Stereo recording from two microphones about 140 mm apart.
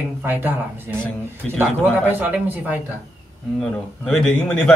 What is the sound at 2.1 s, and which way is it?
Speech, 15° right (ahead or behind).